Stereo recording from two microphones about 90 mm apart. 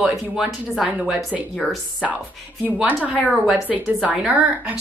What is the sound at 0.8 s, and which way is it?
Speech, 15° right (ahead or behind).